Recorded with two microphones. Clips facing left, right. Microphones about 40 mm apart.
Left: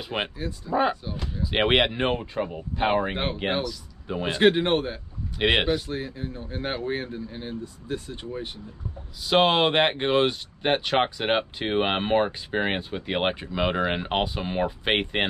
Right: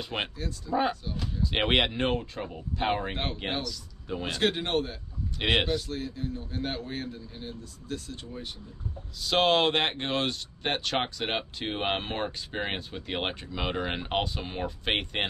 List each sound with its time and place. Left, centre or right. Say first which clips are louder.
0.0 s speech: left 3 dB; centre